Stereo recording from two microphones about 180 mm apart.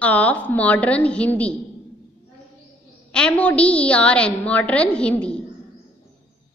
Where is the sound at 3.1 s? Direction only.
5° left (ahead or behind).